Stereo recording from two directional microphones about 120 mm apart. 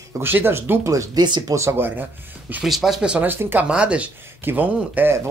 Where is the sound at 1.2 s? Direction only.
40° right (ahead or behind).